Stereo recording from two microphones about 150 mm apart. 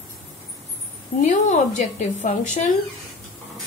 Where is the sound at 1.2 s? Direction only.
55° left (ahead or behind).